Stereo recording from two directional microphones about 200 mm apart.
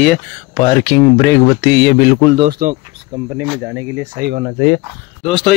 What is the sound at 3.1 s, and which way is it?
Speech, 25° right (ahead or behind).